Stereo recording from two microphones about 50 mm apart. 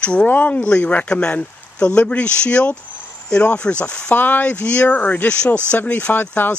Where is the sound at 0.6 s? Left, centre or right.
Left.